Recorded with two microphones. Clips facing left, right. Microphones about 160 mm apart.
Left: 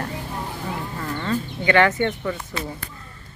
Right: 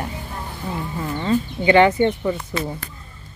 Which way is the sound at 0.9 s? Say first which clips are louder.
Right 6 dB; 15° right (ahead or behind).